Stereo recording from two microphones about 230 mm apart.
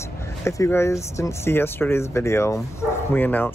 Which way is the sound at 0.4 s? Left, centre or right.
Centre.